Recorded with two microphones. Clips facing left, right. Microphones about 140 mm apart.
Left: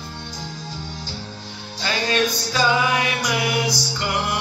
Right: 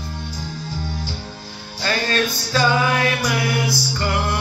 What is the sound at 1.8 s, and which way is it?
Music, 15° left (ahead or behind).